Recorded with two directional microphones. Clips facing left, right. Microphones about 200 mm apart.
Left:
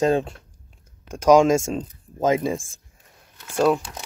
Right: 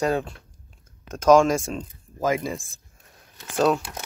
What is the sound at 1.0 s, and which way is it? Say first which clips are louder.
Speech: left 1 dB; 15° left (ahead or behind).